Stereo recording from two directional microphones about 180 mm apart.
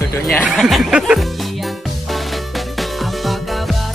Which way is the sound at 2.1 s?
Centre (ahead or behind).